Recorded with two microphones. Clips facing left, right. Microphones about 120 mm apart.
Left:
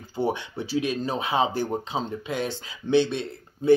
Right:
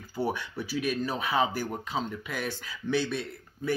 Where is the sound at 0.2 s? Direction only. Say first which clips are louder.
Left 4 dB; 25° left (ahead or behind).